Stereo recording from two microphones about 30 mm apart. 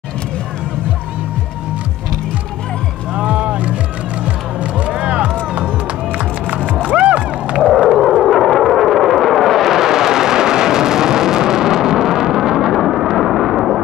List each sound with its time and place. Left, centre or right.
3.2 s music: right
8.2 s vehicle: centre
9.8 s vehicle: centre
12.4 s a sound: centre